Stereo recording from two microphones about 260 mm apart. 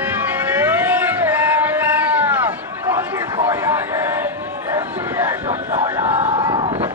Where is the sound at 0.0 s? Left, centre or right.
Centre.